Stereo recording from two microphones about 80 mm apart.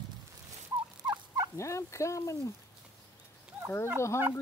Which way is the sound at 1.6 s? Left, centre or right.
Left.